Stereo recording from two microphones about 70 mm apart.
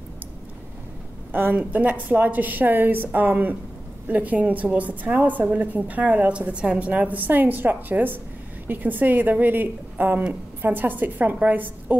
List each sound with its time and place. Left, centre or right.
1.3 s a woman's voice: right